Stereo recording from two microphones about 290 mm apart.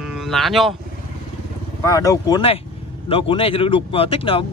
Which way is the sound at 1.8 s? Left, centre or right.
Centre.